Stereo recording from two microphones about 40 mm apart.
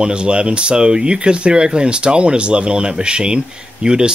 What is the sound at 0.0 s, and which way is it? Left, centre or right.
Speech, right.